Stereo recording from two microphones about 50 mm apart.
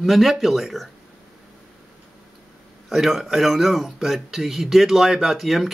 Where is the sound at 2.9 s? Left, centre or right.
Centre.